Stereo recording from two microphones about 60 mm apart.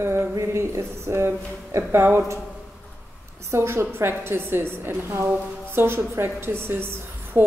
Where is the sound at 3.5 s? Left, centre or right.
Right.